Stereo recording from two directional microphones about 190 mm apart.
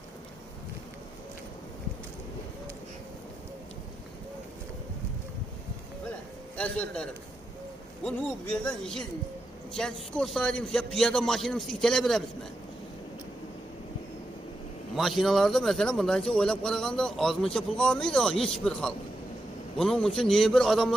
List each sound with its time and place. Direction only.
6.5 s a man's voice: 5° left (ahead or behind)
8.6 s a man's voice: 5° left (ahead or behind)
15.0 s a man's voice: centre (ahead or behind)